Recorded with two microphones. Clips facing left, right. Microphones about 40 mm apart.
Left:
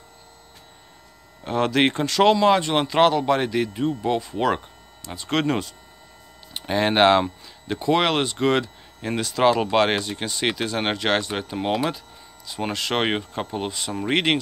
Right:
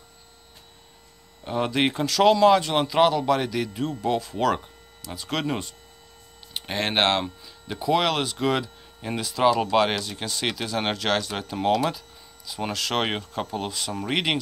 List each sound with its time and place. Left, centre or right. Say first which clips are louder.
1.8 s speech: left 2 dB; left
6.5 s speech: left 4 dB; centre
7.2 s speech: left 5 dB; centre
11.7 s speech: even; left